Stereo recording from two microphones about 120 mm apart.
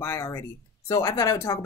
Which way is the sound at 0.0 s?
25° left (ahead or behind).